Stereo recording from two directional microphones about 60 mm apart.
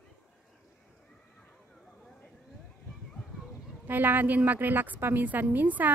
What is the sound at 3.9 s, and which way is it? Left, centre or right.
Speech, right.